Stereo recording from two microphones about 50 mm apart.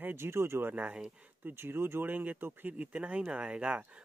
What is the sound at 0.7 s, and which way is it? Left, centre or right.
Speech, right.